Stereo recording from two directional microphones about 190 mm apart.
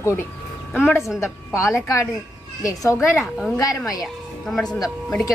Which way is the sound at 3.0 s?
Centre (ahead or behind).